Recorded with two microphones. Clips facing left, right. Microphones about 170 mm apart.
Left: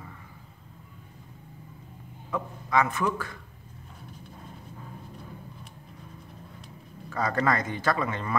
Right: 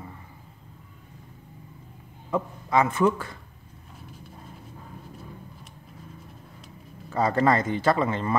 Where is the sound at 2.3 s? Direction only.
25° right (ahead or behind).